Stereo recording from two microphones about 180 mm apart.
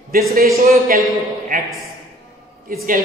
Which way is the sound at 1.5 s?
50° right (ahead or behind).